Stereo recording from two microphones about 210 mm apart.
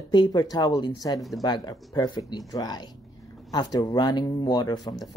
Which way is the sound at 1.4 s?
20° left (ahead or behind).